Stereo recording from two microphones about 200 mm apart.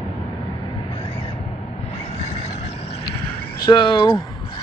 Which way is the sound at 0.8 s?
30° left (ahead or behind).